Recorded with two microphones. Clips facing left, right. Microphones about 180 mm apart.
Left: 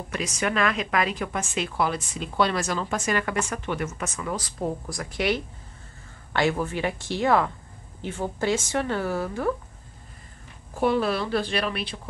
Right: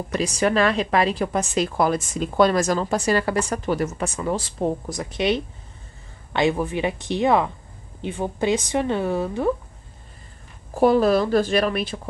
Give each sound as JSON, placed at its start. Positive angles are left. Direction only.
{"t": 0.1, "sound": "speech", "side_deg": -35}
{"t": 10.7, "sound": "a woman's voice", "side_deg": -40}